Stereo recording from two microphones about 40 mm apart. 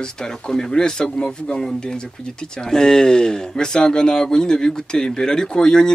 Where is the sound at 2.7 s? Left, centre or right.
Centre.